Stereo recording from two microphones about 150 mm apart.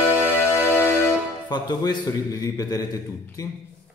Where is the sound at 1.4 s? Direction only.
30° left (ahead or behind).